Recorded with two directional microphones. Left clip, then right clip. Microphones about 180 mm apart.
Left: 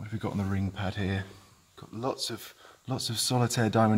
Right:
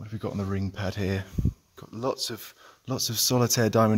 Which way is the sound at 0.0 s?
40° right (ahead or behind).